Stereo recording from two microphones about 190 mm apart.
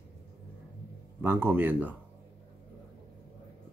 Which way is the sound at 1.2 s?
10° right (ahead or behind).